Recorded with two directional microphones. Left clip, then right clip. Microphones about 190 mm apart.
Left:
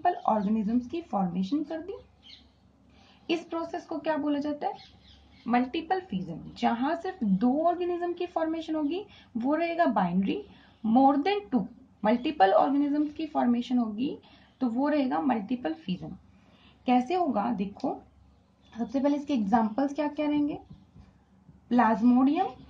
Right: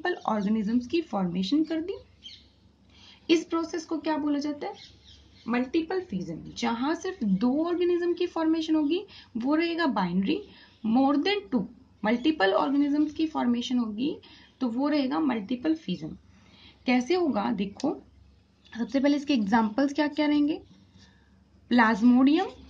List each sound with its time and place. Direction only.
0.0 s a woman's voice: 25° right (ahead or behind)
3.4 s a woman's voice: 20° right (ahead or behind)
4.0 s a woman's voice: 5° right (ahead or behind); by 17.6 s 25° right (ahead or behind)
18.7 s a woman's voice: 25° right (ahead or behind)
21.6 s a woman's voice: 25° right (ahead or behind)